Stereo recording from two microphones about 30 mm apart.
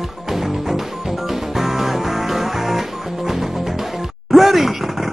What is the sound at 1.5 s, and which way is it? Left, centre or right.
Music, centre.